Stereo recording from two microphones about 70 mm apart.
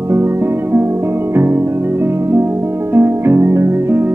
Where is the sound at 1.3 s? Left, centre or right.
Right.